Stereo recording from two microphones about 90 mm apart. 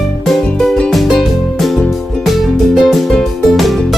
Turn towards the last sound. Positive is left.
turn(degrees=0)  # may be behind; listen again after turning